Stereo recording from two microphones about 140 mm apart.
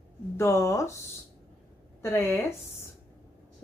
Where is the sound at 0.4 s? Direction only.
20° left (ahead or behind).